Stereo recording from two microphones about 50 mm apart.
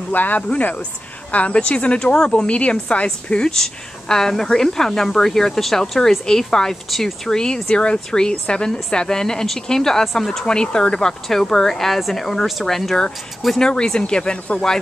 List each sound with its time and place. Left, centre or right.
0.1 s speech: left; by 7.2 s centre
7.2 s speech: centre